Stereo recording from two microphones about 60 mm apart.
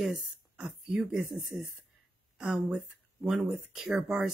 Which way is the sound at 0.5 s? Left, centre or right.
Right.